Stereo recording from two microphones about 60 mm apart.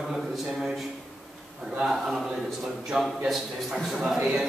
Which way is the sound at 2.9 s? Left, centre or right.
Centre.